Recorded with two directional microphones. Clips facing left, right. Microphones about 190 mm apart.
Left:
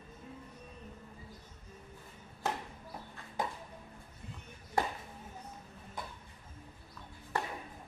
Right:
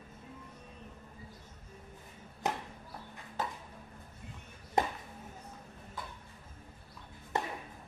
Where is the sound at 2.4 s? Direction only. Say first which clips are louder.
Right 1 dB; 15° right (ahead or behind).